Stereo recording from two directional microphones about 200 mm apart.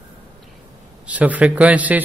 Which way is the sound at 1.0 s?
5° right (ahead or behind).